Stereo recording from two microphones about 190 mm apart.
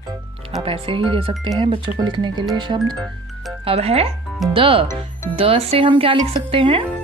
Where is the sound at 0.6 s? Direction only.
30° right (ahead or behind).